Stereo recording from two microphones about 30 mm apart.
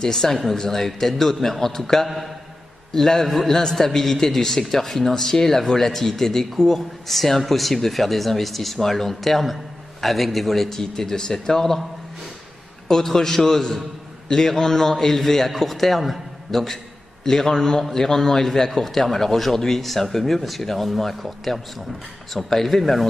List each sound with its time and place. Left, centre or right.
0.0 s a man's voice: centre
10.8 s a man's voice: centre
12.8 s a man's voice: centre
17.2 s a man's voice: centre